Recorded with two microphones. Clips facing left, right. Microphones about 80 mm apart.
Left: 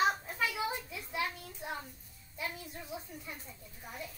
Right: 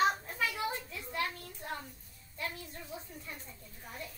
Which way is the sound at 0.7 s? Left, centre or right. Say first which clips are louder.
Even; centre.